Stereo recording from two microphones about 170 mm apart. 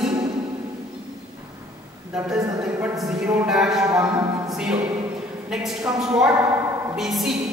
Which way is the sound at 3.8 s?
20° right (ahead or behind).